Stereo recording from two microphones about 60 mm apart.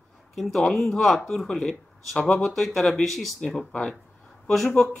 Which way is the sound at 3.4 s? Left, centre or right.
Centre.